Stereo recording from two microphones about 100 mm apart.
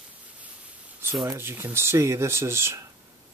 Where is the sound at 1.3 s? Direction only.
25° right (ahead or behind).